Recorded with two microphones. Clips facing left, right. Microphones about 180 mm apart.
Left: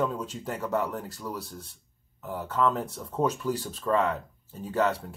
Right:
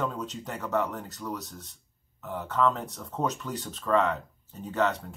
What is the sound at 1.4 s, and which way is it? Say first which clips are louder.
Speech: left 3 dB; 30° left (ahead or behind).